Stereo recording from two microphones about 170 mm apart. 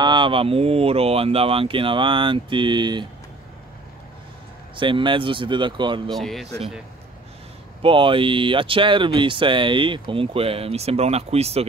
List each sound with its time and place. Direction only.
0.0 s speech: 25° right (ahead or behind)
4.7 s speech: 30° right (ahead or behind)
6.0 s speech: centre (ahead or behind)
7.8 s speech: 30° right (ahead or behind)